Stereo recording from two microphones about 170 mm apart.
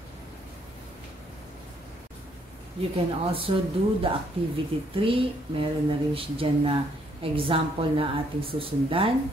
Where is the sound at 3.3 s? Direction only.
35° right (ahead or behind).